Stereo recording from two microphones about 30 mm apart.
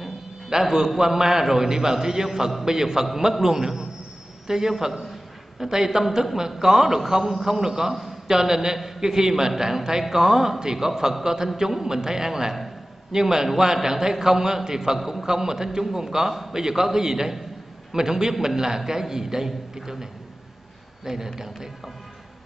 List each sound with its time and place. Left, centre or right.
0.5 s a man's voice: centre
16.3 s a man's voice: centre
16.5 s a man's voice: centre